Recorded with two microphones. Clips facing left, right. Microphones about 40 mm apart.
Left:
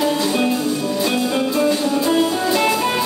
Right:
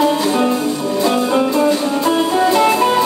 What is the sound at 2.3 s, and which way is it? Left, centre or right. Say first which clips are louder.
Music: right 5 dB; right.